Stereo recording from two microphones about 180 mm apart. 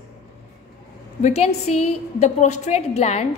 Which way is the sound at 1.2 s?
35° left (ahead or behind).